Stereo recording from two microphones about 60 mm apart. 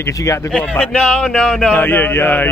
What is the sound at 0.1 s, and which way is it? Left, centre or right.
Speech, left.